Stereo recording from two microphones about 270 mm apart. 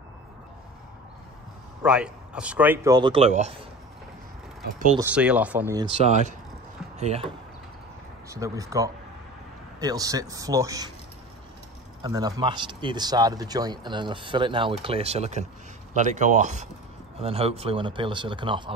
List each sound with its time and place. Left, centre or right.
1.8 s speech: centre; by 3.5 s right
4.9 s speech: centre; by 7.2 s right
8.3 s speech: centre
12.0 s speech: centre